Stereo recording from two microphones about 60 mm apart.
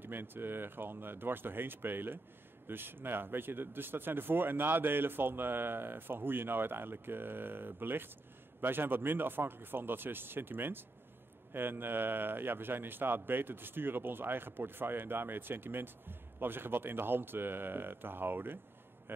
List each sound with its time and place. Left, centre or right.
0.0 s a man's voice: right